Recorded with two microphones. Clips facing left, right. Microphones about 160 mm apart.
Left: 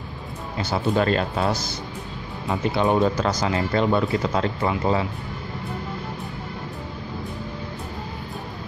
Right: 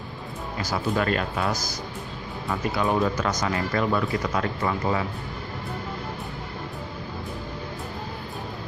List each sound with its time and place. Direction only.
0.6 s speech: 25° left (ahead or behind)